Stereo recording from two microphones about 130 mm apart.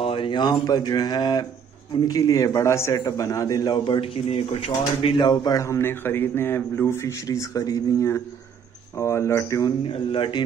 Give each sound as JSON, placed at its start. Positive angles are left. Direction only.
{"t": 0.0, "sound": "a man's voice", "side_deg": 45}
{"t": 9.8, "sound": "speech", "side_deg": 40}